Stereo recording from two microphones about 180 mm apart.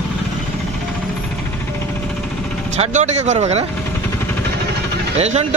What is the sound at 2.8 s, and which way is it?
Speech, 40° right (ahead or behind).